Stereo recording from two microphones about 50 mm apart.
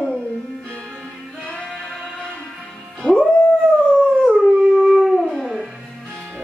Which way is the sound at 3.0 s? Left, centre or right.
Centre.